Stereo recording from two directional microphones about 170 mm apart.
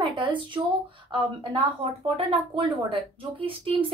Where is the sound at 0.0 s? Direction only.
30° right (ahead or behind).